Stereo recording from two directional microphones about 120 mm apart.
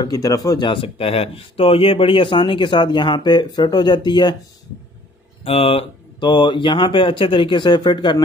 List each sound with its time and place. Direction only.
0.0 s speech: 30° left (ahead or behind)
0.7 s speech: 50° left (ahead or behind)
5.4 s speech: 55° left (ahead or behind)
6.1 s speech: 40° left (ahead or behind)